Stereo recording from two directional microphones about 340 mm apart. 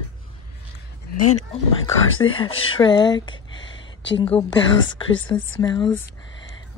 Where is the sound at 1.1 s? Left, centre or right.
Left.